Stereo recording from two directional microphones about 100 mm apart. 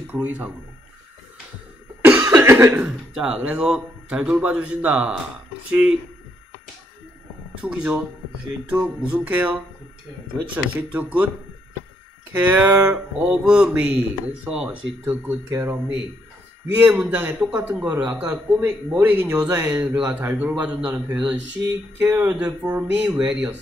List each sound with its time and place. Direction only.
0.0 s speech: 15° right (ahead or behind)
2.0 s cough: 15° right (ahead or behind)
2.2 s cough: 25° right (ahead or behind)
2.7 s speech: 10° right (ahead or behind)
7.6 s speech: 15° right (ahead or behind)
12.3 s speech: 20° right (ahead or behind)
12.8 s speech: 10° right (ahead or behind)
15.5 s speech: 30° right (ahead or behind); by 23.6 s 10° right (ahead or behind)